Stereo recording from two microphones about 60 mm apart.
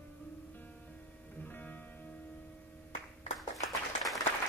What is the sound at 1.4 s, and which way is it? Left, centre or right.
Music, left.